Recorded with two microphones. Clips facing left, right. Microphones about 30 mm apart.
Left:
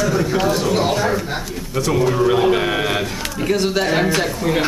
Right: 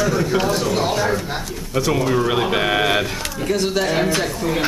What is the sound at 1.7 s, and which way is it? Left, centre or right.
Speech, centre.